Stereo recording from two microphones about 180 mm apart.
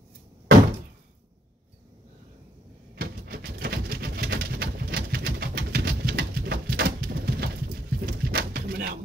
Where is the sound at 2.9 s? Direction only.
55° right (ahead or behind).